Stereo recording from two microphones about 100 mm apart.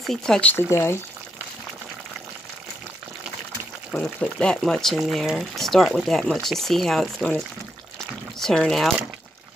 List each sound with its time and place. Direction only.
0.0 s speech: 5° left (ahead or behind)
0.4 s speech: 15° left (ahead or behind)
3.9 s speech: 10° left (ahead or behind)